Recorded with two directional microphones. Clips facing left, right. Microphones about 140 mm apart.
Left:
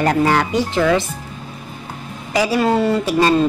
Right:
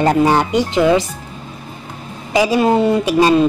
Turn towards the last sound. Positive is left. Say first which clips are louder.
# right 3 dB
turn(degrees=-15)  # may be behind; listen again after turning